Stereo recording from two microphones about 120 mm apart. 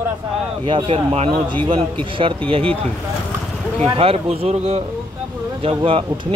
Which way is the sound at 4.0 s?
55° right (ahead or behind).